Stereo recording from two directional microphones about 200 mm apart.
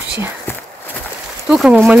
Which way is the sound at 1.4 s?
5° right (ahead or behind).